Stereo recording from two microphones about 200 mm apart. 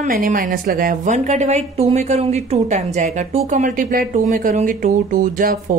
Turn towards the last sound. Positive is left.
turn(degrees=-40)  # may be behind; listen again after turning